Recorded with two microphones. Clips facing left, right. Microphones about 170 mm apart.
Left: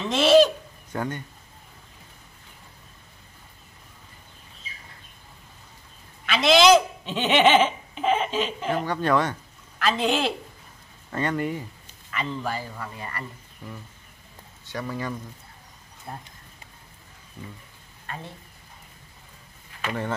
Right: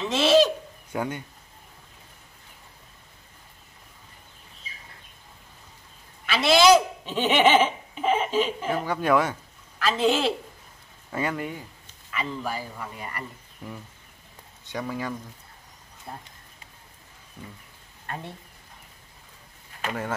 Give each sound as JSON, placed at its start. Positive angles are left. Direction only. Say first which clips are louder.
{"t": 0.0, "sound": "fowl", "louder": "left 2 dB", "side_deg": 0}
{"t": 0.9, "sound": "speech", "louder": "even", "side_deg": -10}
{"t": 6.2, "sound": "speech", "louder": "left 1 dB", "side_deg": -5}
{"t": 14.7, "sound": "speech", "louder": "right 1 dB", "side_deg": -15}
{"t": 16.1, "sound": "speech", "louder": "left 2 dB", "side_deg": 0}
{"t": 19.9, "sound": "speech", "louder": "left 2 dB", "side_deg": -5}